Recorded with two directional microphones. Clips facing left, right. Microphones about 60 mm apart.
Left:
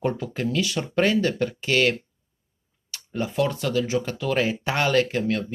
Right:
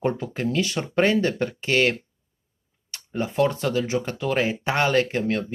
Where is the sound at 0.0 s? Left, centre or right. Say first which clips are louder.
Right 1 dB; right.